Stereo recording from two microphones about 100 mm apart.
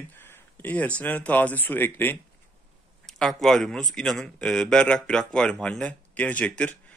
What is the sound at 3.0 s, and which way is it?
A man's voice, 5° left (ahead or behind).